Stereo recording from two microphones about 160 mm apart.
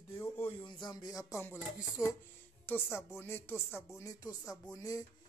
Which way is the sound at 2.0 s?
5° right (ahead or behind).